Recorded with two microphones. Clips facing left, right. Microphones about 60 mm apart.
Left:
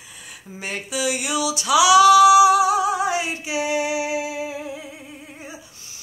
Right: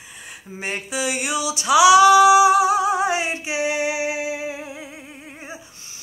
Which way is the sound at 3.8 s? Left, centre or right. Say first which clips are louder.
Right 1 dB; centre.